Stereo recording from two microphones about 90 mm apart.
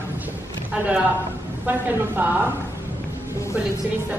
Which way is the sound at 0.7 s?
15° right (ahead or behind).